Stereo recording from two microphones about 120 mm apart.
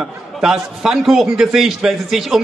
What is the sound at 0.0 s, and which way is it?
A man's voice, 5° right (ahead or behind).